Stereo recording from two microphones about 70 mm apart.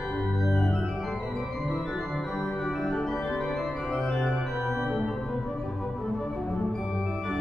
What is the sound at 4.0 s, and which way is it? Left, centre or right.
Organ, centre.